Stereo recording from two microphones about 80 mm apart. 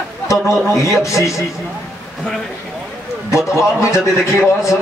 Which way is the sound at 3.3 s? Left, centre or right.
Left.